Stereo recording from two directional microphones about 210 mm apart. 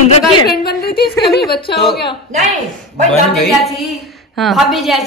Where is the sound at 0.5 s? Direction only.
50° left (ahead or behind).